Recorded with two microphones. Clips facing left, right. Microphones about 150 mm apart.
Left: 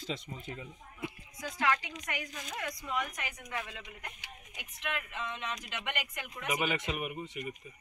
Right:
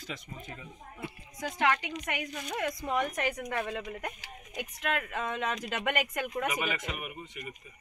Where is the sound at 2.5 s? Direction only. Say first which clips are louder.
Right 6 dB; 45° right (ahead or behind).